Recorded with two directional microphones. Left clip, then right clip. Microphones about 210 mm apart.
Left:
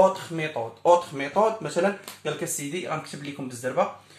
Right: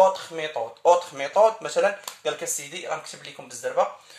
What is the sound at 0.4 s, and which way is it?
Speech, 45° right (ahead or behind).